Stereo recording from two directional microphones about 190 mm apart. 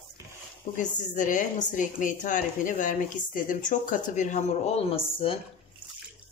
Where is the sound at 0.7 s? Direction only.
40° left (ahead or behind).